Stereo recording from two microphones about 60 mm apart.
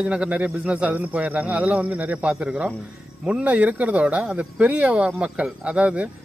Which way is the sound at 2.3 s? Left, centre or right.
Centre.